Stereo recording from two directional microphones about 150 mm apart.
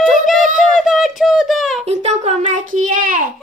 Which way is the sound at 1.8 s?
45° right (ahead or behind).